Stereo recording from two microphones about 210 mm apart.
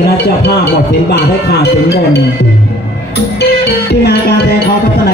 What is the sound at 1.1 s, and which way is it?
Speech, 50° left (ahead or behind).